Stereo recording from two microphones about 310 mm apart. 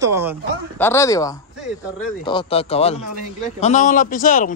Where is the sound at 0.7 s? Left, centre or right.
Centre; by 4.6 s left.